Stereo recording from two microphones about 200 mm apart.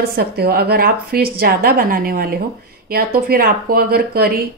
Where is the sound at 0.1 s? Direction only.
50° right (ahead or behind).